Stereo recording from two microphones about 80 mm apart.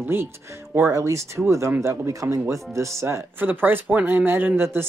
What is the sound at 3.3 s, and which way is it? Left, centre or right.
Speech, right.